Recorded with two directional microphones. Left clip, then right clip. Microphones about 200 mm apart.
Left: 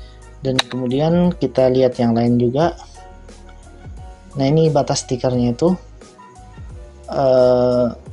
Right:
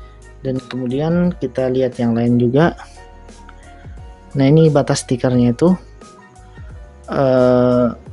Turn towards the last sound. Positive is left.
turn(degrees=-35)  # may be behind; listen again after turning